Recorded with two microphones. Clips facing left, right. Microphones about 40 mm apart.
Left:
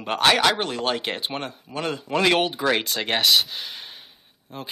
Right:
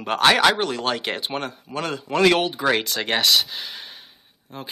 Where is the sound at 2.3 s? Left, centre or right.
Left.